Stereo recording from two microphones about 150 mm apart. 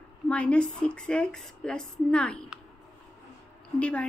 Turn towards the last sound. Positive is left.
turn(degrees=10)  # may be behind; listen again after turning